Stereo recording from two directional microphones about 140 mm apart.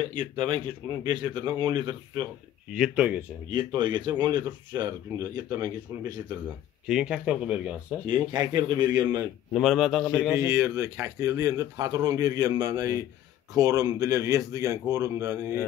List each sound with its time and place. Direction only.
0.0 s speech: 35° right (ahead or behind)
2.7 s speech: 10° right (ahead or behind)
3.4 s speech: 35° right (ahead or behind)
6.9 s speech: 5° right (ahead or behind)
8.1 s speech: 30° right (ahead or behind)
9.5 s a man's voice: 5° left (ahead or behind)
10.3 s speech: 20° right (ahead or behind)